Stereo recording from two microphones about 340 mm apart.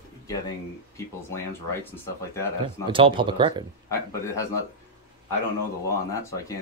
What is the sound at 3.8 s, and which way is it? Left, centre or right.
Speech, centre.